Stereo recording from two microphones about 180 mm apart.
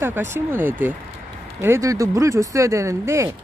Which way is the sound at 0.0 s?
10° right (ahead or behind).